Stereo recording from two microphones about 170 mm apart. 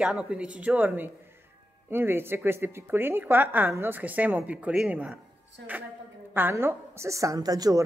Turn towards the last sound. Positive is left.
turn(degrees=-20)  # may be behind; listen again after turning